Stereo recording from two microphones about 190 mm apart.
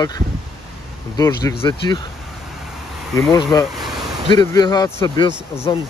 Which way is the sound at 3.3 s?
20° left (ahead or behind).